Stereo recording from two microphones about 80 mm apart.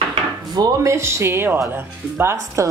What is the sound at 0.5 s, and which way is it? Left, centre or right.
Speech, right.